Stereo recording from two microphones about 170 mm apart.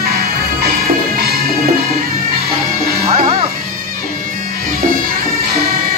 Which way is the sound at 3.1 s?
40° right (ahead or behind).